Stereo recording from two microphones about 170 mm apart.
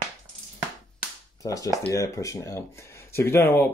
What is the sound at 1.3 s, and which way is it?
Speech, 20° left (ahead or behind).